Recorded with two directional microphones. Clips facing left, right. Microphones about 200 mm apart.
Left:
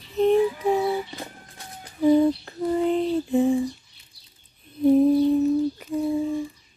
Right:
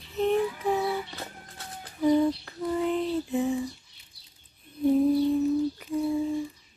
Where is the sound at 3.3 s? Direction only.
30° left (ahead or behind).